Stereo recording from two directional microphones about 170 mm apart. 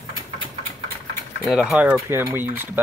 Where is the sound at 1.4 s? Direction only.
5° right (ahead or behind).